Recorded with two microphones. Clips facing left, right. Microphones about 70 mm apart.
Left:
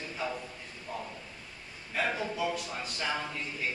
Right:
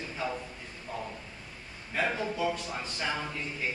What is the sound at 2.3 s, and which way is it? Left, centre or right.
Speech, centre.